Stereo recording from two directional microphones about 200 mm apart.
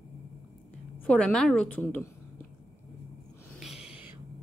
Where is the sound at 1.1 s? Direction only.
5° left (ahead or behind).